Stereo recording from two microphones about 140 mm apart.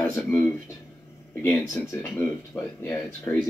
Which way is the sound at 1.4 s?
20° left (ahead or behind).